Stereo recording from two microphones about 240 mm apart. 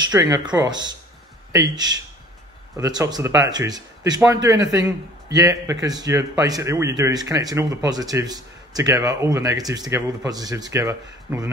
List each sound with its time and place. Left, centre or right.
0.0 s a man's voice: centre